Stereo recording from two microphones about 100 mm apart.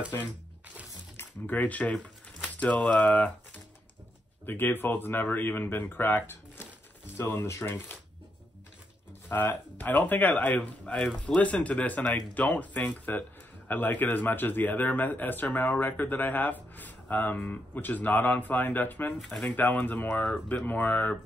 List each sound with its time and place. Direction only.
1.6 s speech: 15° left (ahead or behind)
9.3 s speech: 20° left (ahead or behind)
19.1 s speech: 5° left (ahead or behind)
19.5 s speech: 20° left (ahead or behind)